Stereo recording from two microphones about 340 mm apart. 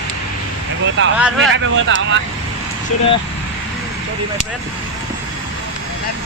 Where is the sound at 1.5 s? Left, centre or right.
Right.